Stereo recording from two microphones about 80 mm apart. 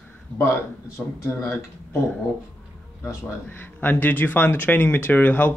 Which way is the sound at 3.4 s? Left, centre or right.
Left.